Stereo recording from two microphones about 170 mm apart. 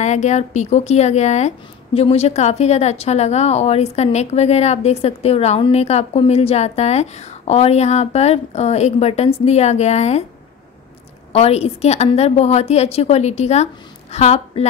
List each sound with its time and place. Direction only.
0.0 s speech: 45° left (ahead or behind)
11.3 s speech: 35° left (ahead or behind)